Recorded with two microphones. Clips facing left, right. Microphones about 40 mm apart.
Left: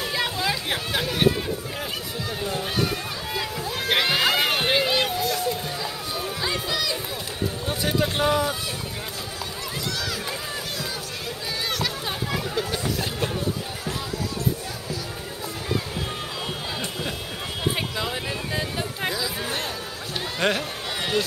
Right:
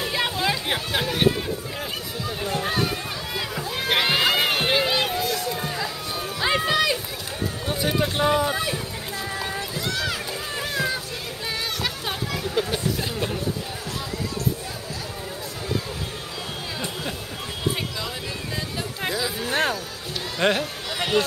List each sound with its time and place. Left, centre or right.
0.0 s a sound: centre
3.9 s crowd: centre
6.4 s run: right
7.6 s speech: centre
17.9 s music: centre
20.3 s music: centre